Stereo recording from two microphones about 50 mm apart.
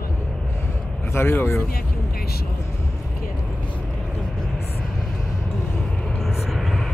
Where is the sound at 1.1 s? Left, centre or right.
Left.